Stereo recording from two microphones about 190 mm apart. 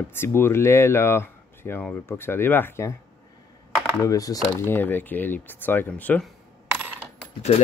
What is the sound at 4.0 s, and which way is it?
Speech, 20° left (ahead or behind).